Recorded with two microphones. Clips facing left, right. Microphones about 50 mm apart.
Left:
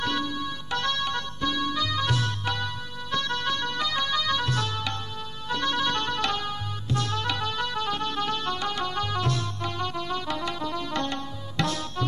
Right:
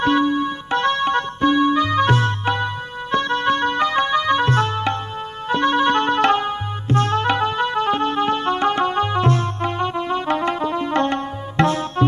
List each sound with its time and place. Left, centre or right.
0.0 s music: right